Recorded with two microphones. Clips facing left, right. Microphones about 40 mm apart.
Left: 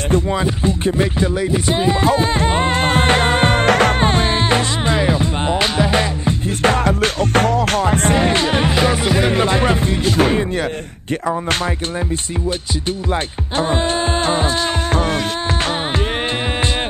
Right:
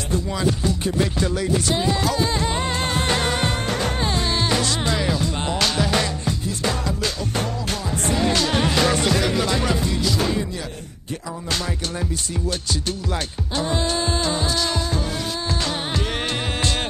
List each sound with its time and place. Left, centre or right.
0.3 s music: left
3.6 s music: left
4.0 s music: left
6.4 s music: left; by 9.2 s centre
9.2 s music: left
14.2 s music: left